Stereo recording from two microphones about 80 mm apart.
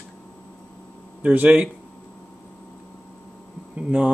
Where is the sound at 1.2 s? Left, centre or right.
Centre.